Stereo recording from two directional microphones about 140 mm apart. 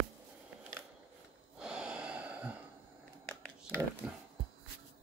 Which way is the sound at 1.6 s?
5° right (ahead or behind).